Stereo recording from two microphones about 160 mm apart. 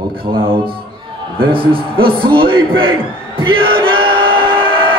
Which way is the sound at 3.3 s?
30° right (ahead or behind).